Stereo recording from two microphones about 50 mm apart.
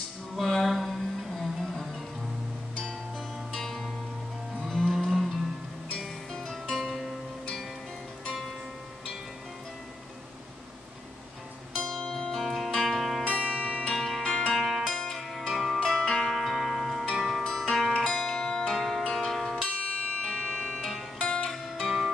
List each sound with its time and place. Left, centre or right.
0.4 s a sound: centre
3.5 s music: centre
6.5 s music: centre
11.9 s music: centre
13.2 s music: centre
13.9 s music: centre
14.2 s music: centre
14.6 s music: centre
15.0 s music: centre
17.4 s music: centre
19.1 s zither: centre
19.7 s music: left
21.8 s music: centre